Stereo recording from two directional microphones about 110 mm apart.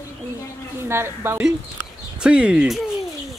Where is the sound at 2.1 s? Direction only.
10° right (ahead or behind).